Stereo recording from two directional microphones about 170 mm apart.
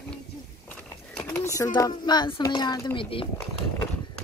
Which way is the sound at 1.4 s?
20° left (ahead or behind).